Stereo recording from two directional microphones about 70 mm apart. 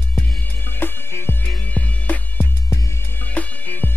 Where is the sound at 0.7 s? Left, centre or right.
Left.